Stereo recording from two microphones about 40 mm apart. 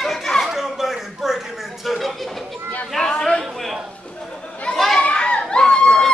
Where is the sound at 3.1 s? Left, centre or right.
Centre.